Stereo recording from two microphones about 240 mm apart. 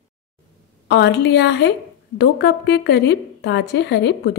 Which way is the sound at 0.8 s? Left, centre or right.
Left.